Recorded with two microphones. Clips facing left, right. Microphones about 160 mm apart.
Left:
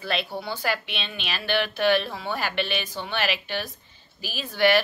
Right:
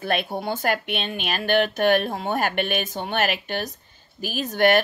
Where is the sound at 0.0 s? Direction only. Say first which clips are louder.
Right 4 dB; 50° right (ahead or behind).